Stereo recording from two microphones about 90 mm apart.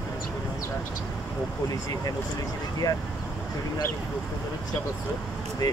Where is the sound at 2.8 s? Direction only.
35° left (ahead or behind).